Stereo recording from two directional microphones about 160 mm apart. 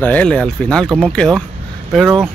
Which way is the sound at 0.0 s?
10° left (ahead or behind).